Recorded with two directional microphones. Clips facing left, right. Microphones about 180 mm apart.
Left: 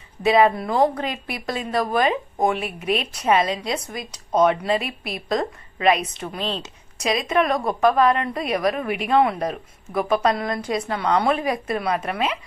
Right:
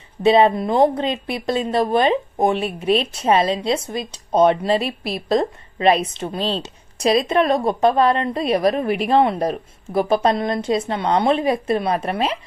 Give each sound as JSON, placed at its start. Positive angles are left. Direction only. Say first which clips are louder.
{"t": 0.2, "sound": "speech", "louder": "right 3 dB", "side_deg": -25}